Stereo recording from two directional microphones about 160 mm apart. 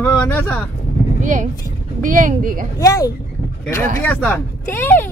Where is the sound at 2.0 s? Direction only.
55° right (ahead or behind).